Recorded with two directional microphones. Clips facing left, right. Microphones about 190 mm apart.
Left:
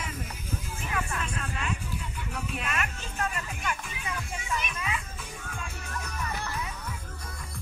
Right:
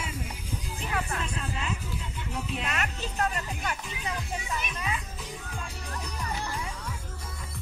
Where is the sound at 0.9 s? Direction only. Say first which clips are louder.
Right 1 dB; 35° right (ahead or behind).